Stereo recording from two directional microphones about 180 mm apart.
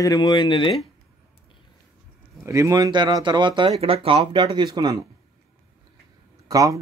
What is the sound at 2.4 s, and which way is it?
Speech, 15° right (ahead or behind).